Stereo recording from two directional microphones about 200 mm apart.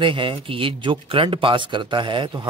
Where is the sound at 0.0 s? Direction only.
25° right (ahead or behind).